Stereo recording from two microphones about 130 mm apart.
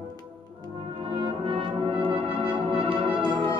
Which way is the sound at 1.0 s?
45° right (ahead or behind).